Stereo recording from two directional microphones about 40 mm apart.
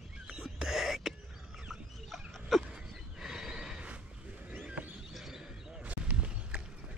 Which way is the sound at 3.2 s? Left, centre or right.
Centre.